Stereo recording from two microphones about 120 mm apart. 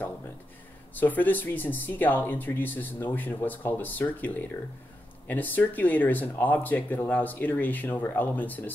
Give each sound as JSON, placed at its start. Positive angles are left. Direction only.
{"t": 0.9, "sound": "speech", "side_deg": 15}